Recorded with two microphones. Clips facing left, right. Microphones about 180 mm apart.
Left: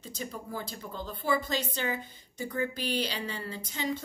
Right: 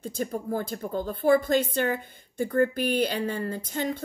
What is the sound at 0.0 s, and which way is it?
A woman's voice, 50° right (ahead or behind).